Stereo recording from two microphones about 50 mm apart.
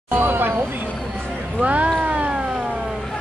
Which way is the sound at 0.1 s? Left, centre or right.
Right.